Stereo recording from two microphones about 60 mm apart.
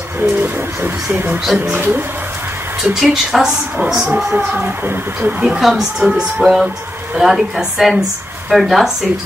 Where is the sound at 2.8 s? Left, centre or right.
Centre.